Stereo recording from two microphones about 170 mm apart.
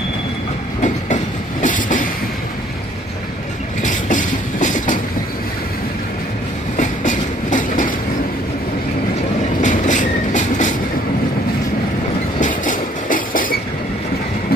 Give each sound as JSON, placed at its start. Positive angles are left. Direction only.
{"t": 0.8, "sound": "train", "side_deg": 45}
{"t": 3.8, "sound": "train", "side_deg": 50}
{"t": 6.8, "sound": "train", "side_deg": 45}
{"t": 9.6, "sound": "train", "side_deg": 45}
{"t": 12.4, "sound": "train", "side_deg": 50}